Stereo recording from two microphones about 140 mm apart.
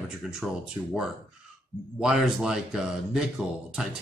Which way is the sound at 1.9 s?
5° right (ahead or behind).